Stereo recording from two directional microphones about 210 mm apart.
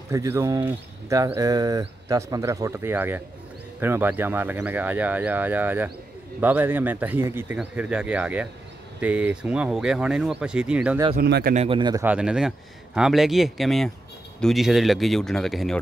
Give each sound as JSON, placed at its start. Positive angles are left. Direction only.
{"t": 0.1, "sound": "a man's voice", "side_deg": -15}
{"t": 11.1, "sound": "speech", "side_deg": -50}
{"t": 11.5, "sound": "a man's voice", "side_deg": -25}